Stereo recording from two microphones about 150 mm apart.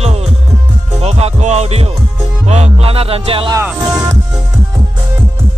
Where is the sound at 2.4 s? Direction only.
45° right (ahead or behind).